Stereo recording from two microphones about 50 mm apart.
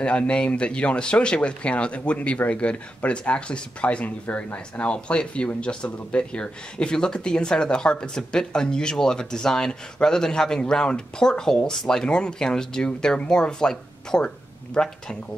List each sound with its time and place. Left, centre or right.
0.0 s speech: left